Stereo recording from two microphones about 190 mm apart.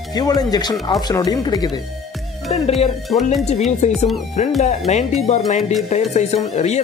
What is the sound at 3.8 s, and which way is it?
Speech, 35° left (ahead or behind).